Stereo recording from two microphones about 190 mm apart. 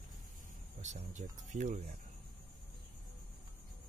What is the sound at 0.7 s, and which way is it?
Speech, 40° right (ahead or behind).